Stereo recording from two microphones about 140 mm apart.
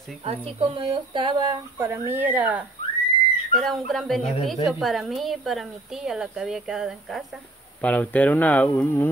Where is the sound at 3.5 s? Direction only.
Centre (ahead or behind).